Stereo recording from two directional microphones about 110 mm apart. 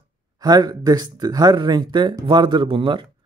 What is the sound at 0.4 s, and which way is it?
Speech, 40° right (ahead or behind).